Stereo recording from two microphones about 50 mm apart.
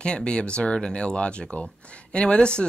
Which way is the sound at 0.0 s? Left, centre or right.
Centre.